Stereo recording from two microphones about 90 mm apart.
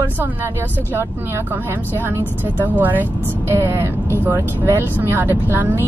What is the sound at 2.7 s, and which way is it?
Speech, 20° right (ahead or behind).